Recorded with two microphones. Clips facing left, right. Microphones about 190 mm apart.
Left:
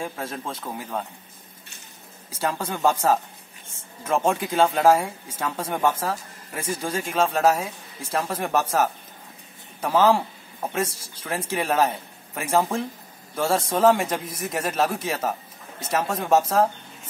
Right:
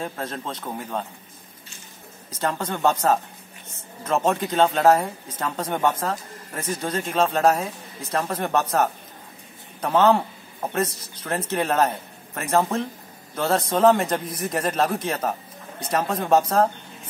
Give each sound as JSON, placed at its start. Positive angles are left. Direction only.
{"t": 0.0, "sound": "a man's voice", "side_deg": 5}
{"t": 2.4, "sound": "a man's voice", "side_deg": 10}
{"t": 11.2, "sound": "a man's voice", "side_deg": 10}